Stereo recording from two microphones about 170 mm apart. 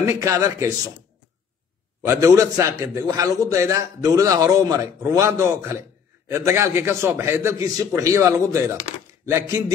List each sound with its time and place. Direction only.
0.0 s a man's voice: 20° right (ahead or behind)
2.0 s a man's voice: 20° right (ahead or behind)